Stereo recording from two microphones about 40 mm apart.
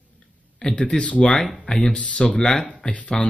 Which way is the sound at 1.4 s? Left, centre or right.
Centre.